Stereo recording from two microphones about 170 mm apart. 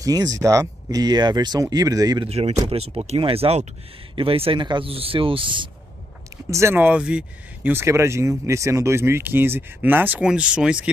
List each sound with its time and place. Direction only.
0.0 s speech: 20° right (ahead or behind)
2.2 s speech: 40° right (ahead or behind)
6.3 s speech: 15° right (ahead or behind)